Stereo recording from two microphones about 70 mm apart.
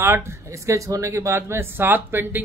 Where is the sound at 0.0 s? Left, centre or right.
Right.